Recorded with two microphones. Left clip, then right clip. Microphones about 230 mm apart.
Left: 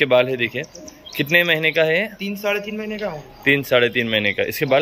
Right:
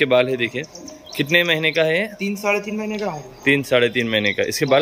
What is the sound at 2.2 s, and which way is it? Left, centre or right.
Speech, right.